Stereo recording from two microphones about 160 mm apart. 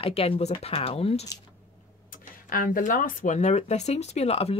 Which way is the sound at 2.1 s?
60° left (ahead or behind).